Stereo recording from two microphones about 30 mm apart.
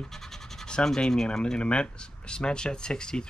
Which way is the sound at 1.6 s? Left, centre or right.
Left.